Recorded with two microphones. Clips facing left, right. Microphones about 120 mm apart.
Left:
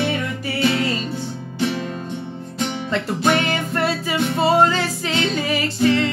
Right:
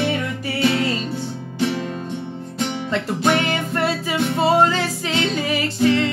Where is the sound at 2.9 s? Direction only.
15° right (ahead or behind).